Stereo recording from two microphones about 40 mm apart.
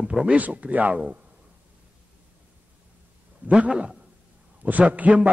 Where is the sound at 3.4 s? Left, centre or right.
Right.